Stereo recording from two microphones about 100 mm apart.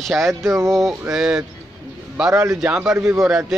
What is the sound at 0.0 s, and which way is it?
Speech, centre (ahead or behind).